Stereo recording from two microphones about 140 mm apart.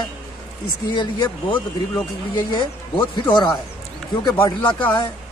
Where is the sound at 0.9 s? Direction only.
35° left (ahead or behind).